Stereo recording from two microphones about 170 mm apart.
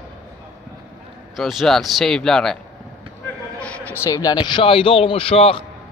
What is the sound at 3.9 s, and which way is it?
A man's voice, 20° left (ahead or behind).